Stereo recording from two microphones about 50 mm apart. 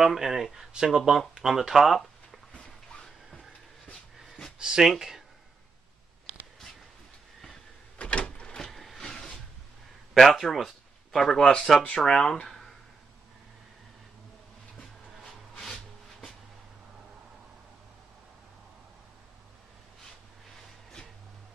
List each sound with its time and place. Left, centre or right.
0.0 s speech: centre
2.5 s a sound: centre
4.6 s speech: centre
8.0 s door: left
8.6 s vehicle: centre
10.1 s a man's voice: centre
14.8 s a sound: centre